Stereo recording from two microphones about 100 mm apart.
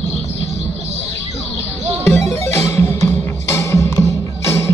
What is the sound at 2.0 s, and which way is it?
Music, 25° left (ahead or behind).